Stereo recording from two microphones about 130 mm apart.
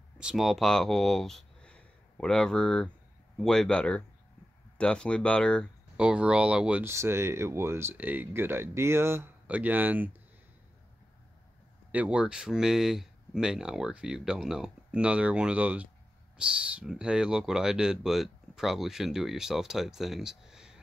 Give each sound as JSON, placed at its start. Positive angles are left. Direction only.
{"t": 0.2, "sound": "speech", "side_deg": -5}
{"t": 5.9, "sound": "speech", "side_deg": -10}
{"t": 6.9, "sound": "speech", "side_deg": -20}
{"t": 11.9, "sound": "speech", "side_deg": -10}